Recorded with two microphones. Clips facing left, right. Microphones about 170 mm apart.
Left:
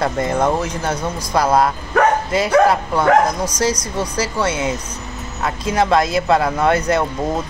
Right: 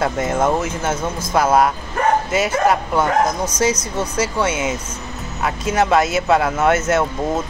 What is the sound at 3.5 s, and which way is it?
Speech, 5° right (ahead or behind).